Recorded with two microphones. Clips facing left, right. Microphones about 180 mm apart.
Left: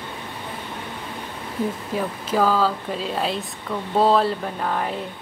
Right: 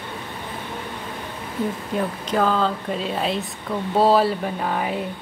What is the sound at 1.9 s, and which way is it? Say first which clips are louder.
Speech: right 1 dB; 5° left (ahead or behind).